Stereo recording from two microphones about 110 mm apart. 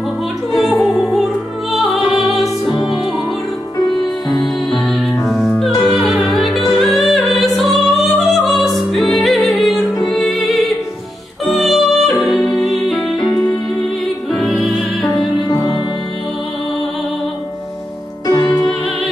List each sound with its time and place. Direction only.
0.6 s opera: centre (ahead or behind)
2.7 s music: 35° left (ahead or behind)
3.8 s music: centre (ahead or behind)
13.3 s music: 35° left (ahead or behind)
14.3 s music: centre (ahead or behind)
15.3 s music: 35° left (ahead or behind)
18.2 s music: 35° left (ahead or behind)